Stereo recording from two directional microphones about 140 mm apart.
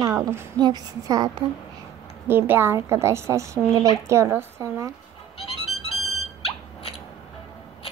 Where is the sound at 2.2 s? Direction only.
15° right (ahead or behind).